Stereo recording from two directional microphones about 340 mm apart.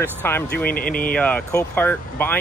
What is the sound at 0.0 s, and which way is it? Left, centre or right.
Speech, centre.